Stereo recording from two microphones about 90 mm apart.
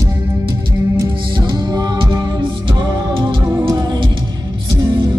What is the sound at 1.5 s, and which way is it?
Music, 50° right (ahead or behind).